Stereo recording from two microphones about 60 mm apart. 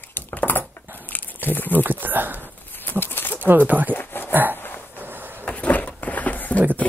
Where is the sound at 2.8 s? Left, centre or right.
Left.